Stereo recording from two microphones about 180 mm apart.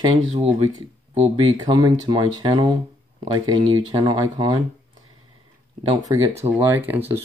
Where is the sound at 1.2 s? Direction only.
25° right (ahead or behind).